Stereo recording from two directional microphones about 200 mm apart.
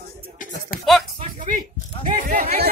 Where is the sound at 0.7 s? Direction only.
45° left (ahead or behind).